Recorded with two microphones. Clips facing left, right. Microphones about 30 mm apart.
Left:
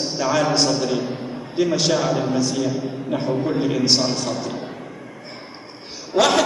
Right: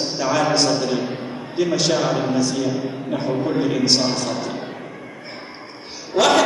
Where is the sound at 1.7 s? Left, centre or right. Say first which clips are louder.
Right 1 dB; centre.